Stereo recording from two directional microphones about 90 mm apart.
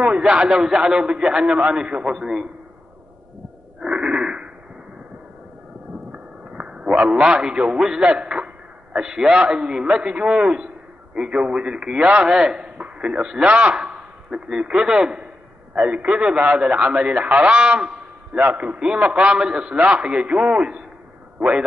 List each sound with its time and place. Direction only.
0.0 s a man's voice: 10° right (ahead or behind)
3.8 s a sound: 10° right (ahead or behind)
6.1 s a man's voice: 15° right (ahead or behind)